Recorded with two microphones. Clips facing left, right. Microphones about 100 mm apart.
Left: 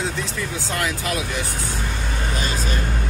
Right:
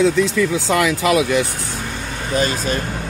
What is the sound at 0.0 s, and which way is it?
Speech, 90° right.